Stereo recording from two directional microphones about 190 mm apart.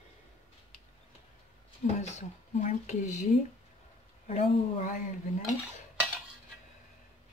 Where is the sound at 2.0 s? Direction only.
35° left (ahead or behind).